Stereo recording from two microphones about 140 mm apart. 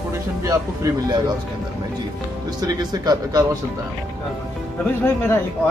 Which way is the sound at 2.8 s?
30° right (ahead or behind).